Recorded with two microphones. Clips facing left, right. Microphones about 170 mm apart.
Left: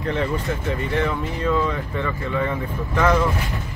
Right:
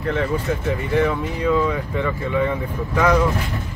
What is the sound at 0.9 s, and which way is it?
Speech, 5° right (ahead or behind).